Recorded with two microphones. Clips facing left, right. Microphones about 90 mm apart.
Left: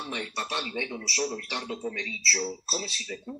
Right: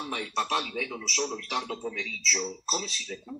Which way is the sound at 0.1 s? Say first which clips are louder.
Right 5 dB; 40° right (ahead or behind).